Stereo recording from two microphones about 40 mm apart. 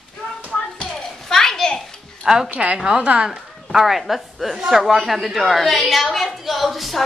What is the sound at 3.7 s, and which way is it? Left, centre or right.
Speech, centre.